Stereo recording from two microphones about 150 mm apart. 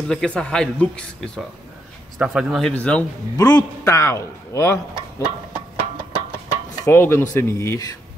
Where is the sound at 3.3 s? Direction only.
25° left (ahead or behind).